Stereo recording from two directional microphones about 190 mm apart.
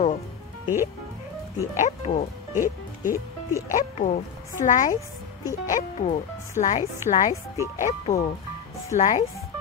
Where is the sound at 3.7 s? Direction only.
40° left (ahead or behind).